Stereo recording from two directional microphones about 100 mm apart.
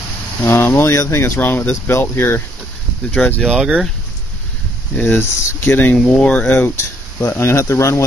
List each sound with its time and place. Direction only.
0.5 s speech: 25° left (ahead or behind)
3.1 s speech: 15° left (ahead or behind)
3.4 s speech: 10° right (ahead or behind)
4.9 s speech: 20° left (ahead or behind)